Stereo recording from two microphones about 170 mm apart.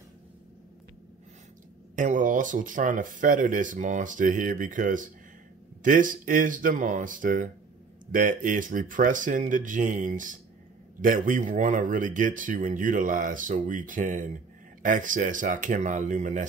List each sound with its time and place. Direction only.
2.0 s speech: 50° right (ahead or behind)